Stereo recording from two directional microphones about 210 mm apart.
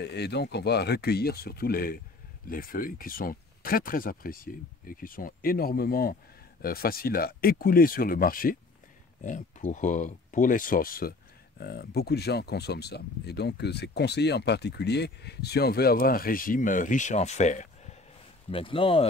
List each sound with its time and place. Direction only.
0.0 s speech: 50° left (ahead or behind); by 19.0 s 25° left (ahead or behind)